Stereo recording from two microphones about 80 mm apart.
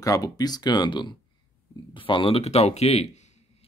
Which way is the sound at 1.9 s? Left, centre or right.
Left.